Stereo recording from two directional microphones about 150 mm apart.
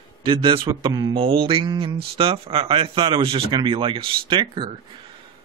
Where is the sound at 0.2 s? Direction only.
35° right (ahead or behind).